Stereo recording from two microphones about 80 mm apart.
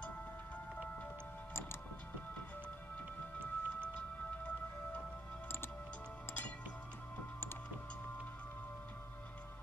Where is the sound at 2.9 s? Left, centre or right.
Centre.